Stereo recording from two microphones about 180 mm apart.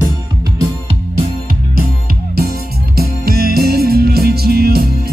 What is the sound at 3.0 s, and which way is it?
Music, 60° right (ahead or behind).